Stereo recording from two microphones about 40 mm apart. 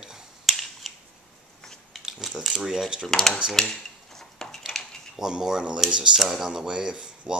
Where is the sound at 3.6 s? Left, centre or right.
Centre.